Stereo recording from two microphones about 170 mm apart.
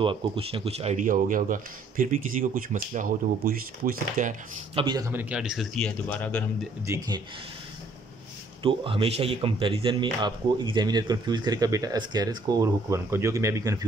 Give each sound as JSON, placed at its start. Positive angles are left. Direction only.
{"t": 0.0, "sound": "speech", "side_deg": -30}
{"t": 4.7, "sound": "speech", "side_deg": -25}
{"t": 5.1, "sound": "a man's voice", "side_deg": -5}
{"t": 6.9, "sound": "speech", "side_deg": -20}
{"t": 8.6, "sound": "speech", "side_deg": -30}